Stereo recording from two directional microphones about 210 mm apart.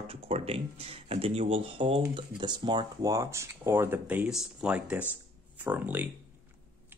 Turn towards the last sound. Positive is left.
turn(degrees=-10)  # may be behind; listen again after turning